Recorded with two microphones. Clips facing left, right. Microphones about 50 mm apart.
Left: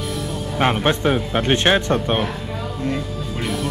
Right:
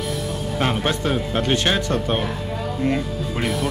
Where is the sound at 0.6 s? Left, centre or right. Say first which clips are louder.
Left 4 dB; left.